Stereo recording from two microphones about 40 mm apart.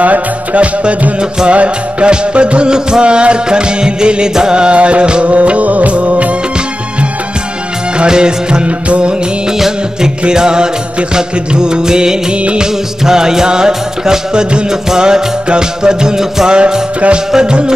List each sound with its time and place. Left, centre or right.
0.0 s music: right
8.0 s music: right
9.5 s music: centre